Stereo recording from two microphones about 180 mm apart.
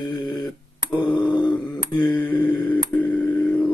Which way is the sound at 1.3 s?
25° left (ahead or behind).